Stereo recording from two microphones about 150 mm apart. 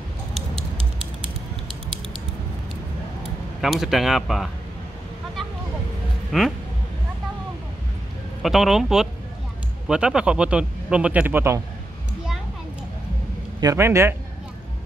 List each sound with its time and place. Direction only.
3.6 s speech: centre (ahead or behind)
6.3 s speech: centre (ahead or behind)
8.4 s speech: centre (ahead or behind)
13.6 s speech: 20° right (ahead or behind)